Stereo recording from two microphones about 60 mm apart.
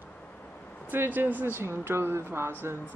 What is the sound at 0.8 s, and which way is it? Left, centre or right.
Speech, right.